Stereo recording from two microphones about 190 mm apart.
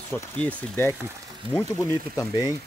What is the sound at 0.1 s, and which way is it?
Speech, 10° left (ahead or behind).